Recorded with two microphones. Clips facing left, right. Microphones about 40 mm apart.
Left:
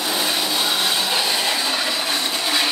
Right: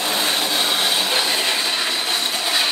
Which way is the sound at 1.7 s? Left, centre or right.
Right.